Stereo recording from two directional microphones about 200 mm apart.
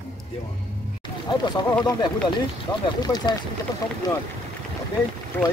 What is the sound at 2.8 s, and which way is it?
Speech, 20° left (ahead or behind).